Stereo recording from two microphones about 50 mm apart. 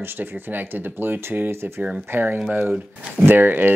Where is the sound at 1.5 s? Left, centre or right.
Right.